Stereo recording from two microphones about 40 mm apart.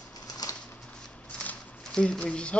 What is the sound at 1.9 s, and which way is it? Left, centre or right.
Speech, left.